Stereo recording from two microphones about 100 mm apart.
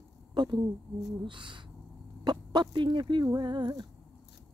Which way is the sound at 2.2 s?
45° right (ahead or behind).